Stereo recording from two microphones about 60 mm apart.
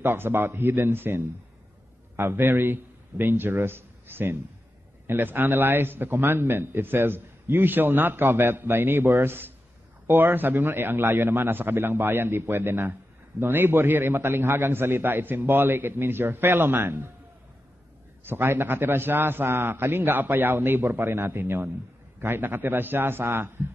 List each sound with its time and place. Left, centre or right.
0.0 s a man's voice: right
18.2 s a man's voice: right